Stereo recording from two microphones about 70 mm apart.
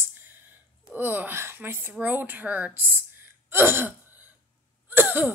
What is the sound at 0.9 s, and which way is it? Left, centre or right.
A woman's voice, right.